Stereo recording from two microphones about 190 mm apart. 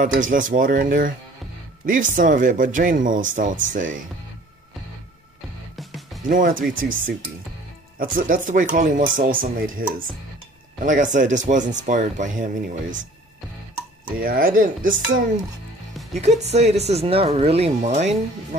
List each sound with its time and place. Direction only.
0.2 s speech: 45° right (ahead or behind)
5.8 s music: centre (ahead or behind)
6.2 s speech: 45° right (ahead or behind)
14.2 s speech: 50° right (ahead or behind)
16.1 s speech: 35° right (ahead or behind)